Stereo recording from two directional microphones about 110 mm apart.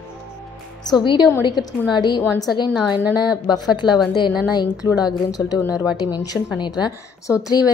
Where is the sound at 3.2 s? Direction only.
40° left (ahead or behind).